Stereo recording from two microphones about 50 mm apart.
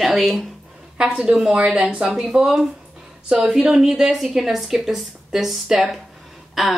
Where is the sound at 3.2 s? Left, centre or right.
Right.